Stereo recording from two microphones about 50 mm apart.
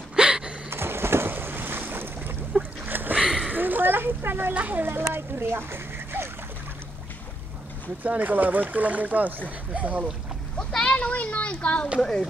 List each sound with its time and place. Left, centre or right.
0.1 s gasp: centre
0.7 s a sound: right
1.3 s boat: right
2.5 s boat: right
2.9 s boat: right
3.2 s a sound: centre
3.4 s a sound: right
4.6 s speech: right
5.1 s speech: right
8.0 s speech: right
10.6 s a sound: centre
11.0 s a child's voice: left
12.0 s speech: centre